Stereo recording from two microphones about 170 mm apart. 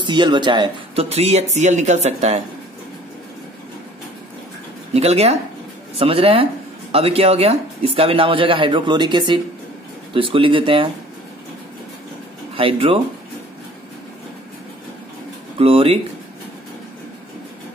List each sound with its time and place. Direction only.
0.0 s speech: 25° right (ahead or behind)
4.9 s speech: 40° right (ahead or behind)
12.5 s speech: 30° right (ahead or behind)
15.6 s speech: 35° right (ahead or behind)